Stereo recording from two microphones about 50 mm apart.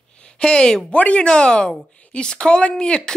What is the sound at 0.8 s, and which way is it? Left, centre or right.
A woman's voice, left.